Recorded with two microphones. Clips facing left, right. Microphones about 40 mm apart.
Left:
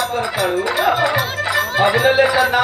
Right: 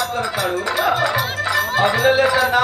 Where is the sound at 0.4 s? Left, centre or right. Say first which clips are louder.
Left 3 dB; centre.